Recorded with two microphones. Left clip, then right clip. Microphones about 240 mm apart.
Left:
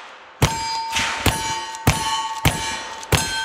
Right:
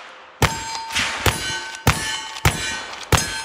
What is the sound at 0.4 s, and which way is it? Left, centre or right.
Clang, centre.